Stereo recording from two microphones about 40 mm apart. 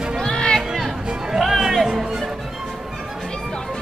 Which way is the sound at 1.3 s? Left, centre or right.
Centre.